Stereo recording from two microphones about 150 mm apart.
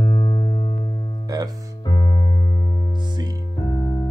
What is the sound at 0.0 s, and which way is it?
Music, 25° left (ahead or behind).